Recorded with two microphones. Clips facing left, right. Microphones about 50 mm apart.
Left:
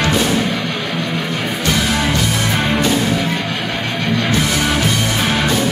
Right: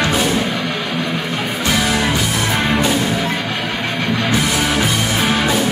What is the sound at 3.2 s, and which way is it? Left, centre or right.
Music, centre.